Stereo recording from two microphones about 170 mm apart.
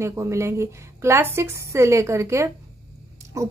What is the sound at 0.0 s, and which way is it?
A woman's voice, 15° right (ahead or behind).